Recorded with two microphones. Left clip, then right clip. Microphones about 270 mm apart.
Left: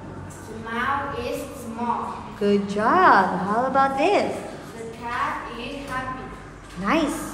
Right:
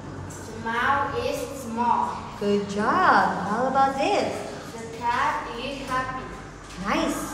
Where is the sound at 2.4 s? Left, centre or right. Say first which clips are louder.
Left 3 dB; left.